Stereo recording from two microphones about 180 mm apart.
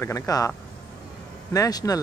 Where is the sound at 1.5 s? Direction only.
20° left (ahead or behind).